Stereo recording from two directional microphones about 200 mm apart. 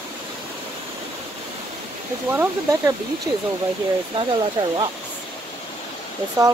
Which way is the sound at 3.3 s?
15° right (ahead or behind).